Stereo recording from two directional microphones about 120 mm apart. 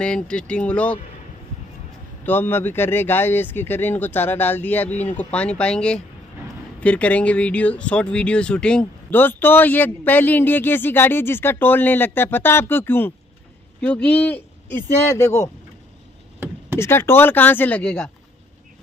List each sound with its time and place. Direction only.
0.0 s speech: 10° left (ahead or behind)
2.2 s speech: 15° left (ahead or behind)
15.0 s speech: 25° left (ahead or behind)
16.7 s speech: 20° left (ahead or behind)